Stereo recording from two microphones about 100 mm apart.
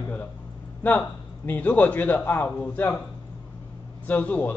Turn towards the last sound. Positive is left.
turn(degrees=15)  # may be behind; listen again after turning